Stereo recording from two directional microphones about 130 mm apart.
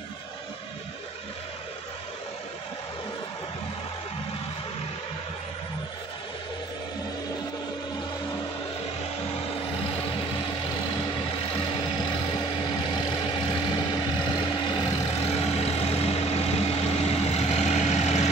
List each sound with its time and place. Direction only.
13.3 s vehicle: 35° left (ahead or behind)
15.2 s vehicle: 55° left (ahead or behind)